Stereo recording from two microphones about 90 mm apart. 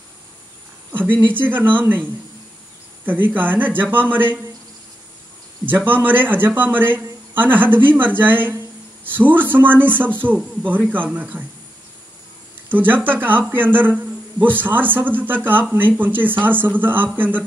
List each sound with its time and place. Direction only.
0.9 s speech: 20° right (ahead or behind)
5.9 s speech: 20° right (ahead or behind)
12.6 s speech: 20° right (ahead or behind)